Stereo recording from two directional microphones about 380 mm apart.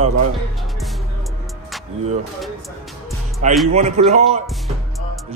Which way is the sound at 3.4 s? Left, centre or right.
Centre.